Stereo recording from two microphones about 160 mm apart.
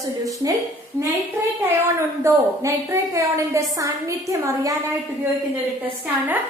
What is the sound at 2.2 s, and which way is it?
A woman's voice, 20° right (ahead or behind).